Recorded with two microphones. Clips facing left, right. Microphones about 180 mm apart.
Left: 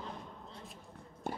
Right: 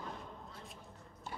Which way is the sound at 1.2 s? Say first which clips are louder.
Left 7 dB; 55° left (ahead or behind).